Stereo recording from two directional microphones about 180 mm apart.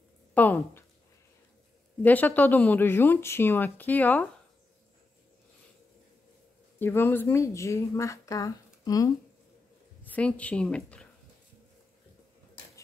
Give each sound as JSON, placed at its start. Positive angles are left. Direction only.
{"t": 0.3, "sound": "speech", "side_deg": 10}
{"t": 2.0, "sound": "speech", "side_deg": 10}
{"t": 6.8, "sound": "speech", "side_deg": 10}
{"t": 10.0, "sound": "a woman's voice", "side_deg": 10}